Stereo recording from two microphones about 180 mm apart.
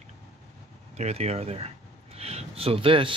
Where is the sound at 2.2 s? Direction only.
35° right (ahead or behind).